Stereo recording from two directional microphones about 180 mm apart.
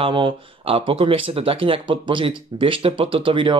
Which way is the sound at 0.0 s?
30° right (ahead or behind).